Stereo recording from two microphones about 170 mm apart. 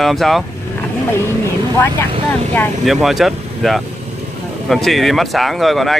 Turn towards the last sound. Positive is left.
turn(degrees=0)  # may be behind; listen again after turning